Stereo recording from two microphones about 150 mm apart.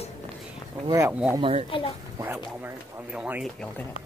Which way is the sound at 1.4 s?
40° right (ahead or behind).